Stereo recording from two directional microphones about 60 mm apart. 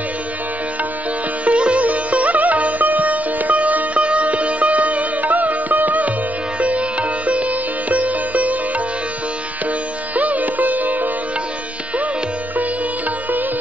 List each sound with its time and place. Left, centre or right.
1.4 s sitar: right
10.1 s music: right